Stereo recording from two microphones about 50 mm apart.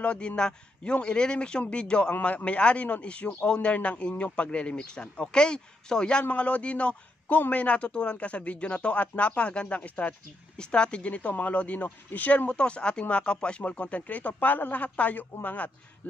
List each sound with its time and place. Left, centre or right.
0.0 s a man's voice: left
6.2 s a man's voice: left